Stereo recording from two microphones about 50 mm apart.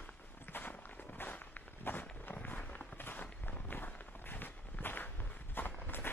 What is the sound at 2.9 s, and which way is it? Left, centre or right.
Walk, left.